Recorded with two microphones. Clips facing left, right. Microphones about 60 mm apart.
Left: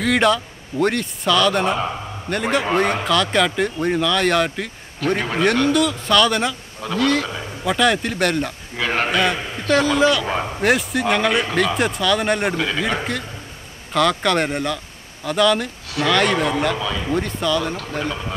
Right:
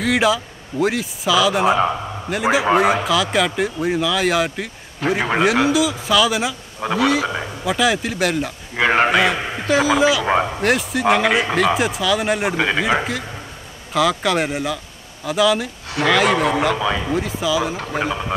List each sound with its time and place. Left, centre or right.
0.0 s speech: centre
8.7 s a man's voice: right
9.1 s speech: centre
10.2 s speech: right
10.6 s speech: centre
12.5 s speech: right
13.9 s speech: centre
16.7 s speech: right
17.1 s speech: centre
17.7 s speech: centre